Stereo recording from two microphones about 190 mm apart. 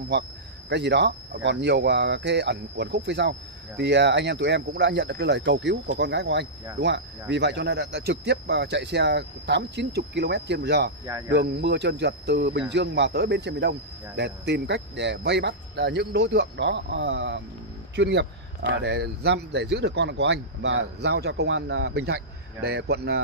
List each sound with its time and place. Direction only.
0.1 s speech: 65° right (ahead or behind)